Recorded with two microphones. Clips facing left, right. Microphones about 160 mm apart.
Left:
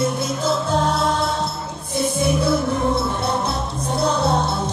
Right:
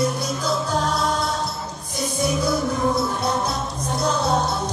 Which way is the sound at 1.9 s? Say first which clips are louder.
Left 3 dB; 30° left (ahead or behind).